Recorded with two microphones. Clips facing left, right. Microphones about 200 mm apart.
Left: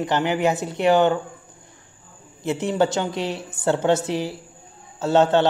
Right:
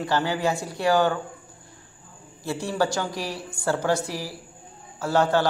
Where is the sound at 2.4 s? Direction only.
20° left (ahead or behind).